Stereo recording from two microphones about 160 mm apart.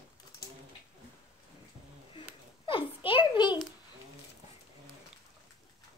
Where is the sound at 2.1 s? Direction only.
30° left (ahead or behind).